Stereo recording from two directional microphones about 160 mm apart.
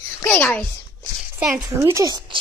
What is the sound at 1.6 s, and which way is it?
Speech, 20° right (ahead or behind).